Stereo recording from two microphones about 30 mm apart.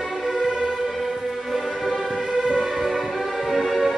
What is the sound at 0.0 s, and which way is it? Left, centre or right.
Music, centre.